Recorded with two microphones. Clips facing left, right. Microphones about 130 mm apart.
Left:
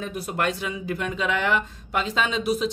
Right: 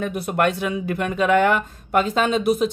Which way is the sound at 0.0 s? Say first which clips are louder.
Right 6 dB; 55° right (ahead or behind).